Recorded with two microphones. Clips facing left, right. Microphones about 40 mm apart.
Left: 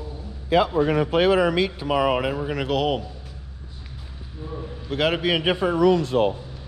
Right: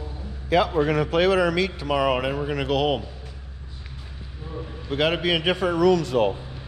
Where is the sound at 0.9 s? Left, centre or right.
Centre.